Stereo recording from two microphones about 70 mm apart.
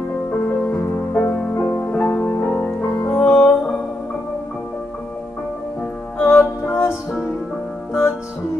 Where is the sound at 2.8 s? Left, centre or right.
Left.